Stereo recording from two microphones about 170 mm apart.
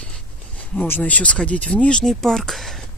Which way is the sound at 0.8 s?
10° left (ahead or behind).